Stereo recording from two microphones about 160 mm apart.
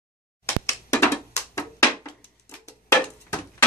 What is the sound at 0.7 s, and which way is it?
Music, 20° left (ahead or behind).